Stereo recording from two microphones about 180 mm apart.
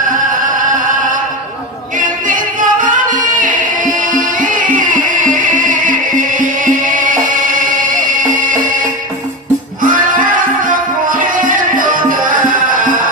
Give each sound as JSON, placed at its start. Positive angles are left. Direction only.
{"t": 2.0, "sound": "music", "side_deg": -45}
{"t": 9.8, "sound": "music", "side_deg": -50}